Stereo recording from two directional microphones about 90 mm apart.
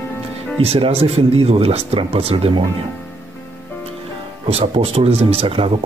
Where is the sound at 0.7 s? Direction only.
90° right.